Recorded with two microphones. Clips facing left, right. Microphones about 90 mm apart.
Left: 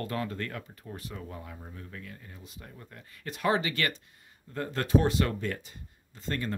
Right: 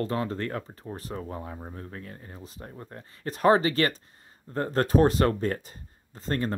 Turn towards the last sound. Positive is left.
turn(degrees=-40)  # may be behind; listen again after turning